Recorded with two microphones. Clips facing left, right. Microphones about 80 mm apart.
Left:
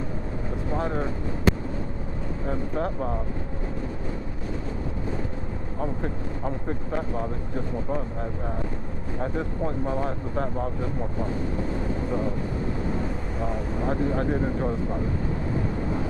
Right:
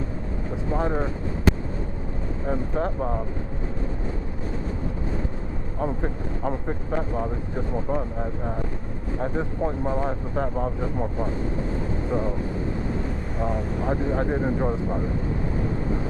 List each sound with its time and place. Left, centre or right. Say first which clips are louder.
0.7 s speech: right 2 dB; centre
2.4 s speech: right 2 dB; centre
7.5 s speech: right 2 dB; centre
13.8 s speech: even; centre